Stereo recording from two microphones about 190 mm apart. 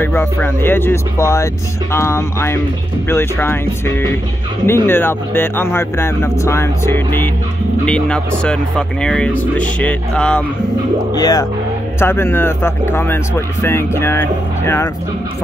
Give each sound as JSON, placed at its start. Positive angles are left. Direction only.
{"t": 0.0, "sound": "speech", "side_deg": 10}
{"t": 11.1, "sound": "speech", "side_deg": 20}